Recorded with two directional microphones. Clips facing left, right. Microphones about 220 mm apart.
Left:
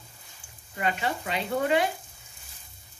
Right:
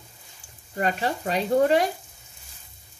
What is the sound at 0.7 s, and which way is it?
Speech, 40° right (ahead or behind).